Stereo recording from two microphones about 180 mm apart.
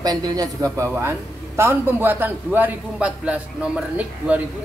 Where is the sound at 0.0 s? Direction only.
20° right (ahead or behind).